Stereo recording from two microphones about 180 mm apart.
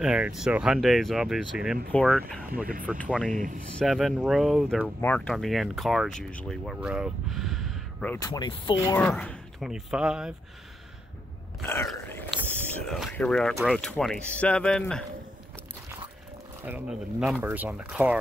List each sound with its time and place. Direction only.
0.0 s speech: 5° right (ahead or behind)
2.5 s speech: 50° right (ahead or behind)
3.8 s speech: centre (ahead or behind)
8.2 s speech: 25° left (ahead or behind)
8.9 s speech: 10° left (ahead or behind)
11.6 s a sound: 15° left (ahead or behind)
12.3 s whispering: 10° right (ahead or behind)
12.7 s speech: 5° left (ahead or behind)
16.6 s speech: 10° right (ahead or behind)